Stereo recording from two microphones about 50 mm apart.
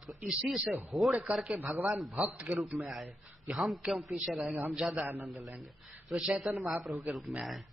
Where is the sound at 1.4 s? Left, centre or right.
Right.